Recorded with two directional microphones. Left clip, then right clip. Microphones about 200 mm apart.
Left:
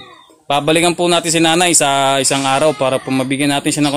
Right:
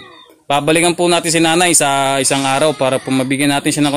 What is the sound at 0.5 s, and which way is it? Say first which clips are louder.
Speech: even; 15° right (ahead or behind).